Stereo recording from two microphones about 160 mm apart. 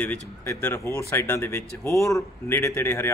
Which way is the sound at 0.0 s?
10° left (ahead or behind).